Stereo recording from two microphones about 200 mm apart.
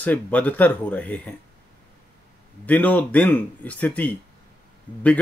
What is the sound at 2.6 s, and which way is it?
Speech, 5° left (ahead or behind).